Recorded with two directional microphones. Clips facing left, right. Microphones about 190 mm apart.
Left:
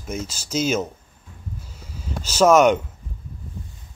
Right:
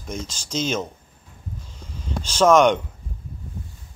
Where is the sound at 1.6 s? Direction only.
5° left (ahead or behind).